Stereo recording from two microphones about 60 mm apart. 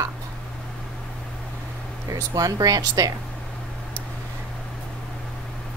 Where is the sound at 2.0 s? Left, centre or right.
Right.